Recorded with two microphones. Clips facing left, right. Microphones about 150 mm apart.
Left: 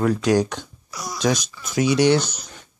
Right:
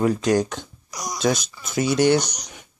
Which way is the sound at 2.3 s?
15° right (ahead or behind).